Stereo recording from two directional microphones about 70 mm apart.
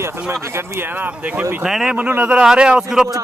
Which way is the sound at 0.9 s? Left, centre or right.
Right.